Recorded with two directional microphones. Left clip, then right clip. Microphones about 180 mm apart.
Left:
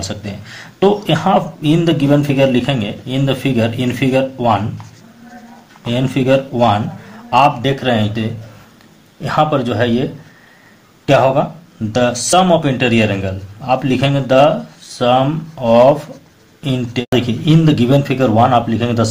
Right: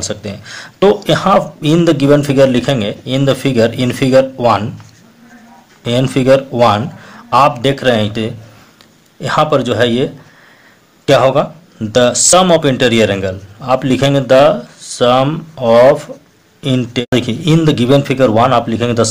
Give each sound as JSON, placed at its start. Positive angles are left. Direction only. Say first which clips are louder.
{"t": 0.0, "sound": "speech", "louder": "right 4 dB", "side_deg": -45}
{"t": 5.9, "sound": "a man's voice", "louder": "right 4 dB", "side_deg": -50}